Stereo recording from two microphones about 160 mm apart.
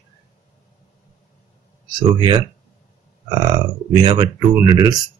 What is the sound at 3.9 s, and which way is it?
Speech, 25° right (ahead or behind).